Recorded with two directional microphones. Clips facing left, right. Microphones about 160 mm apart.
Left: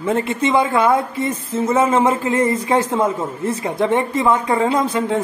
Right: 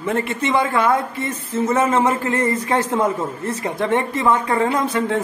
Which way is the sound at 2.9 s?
10° left (ahead or behind).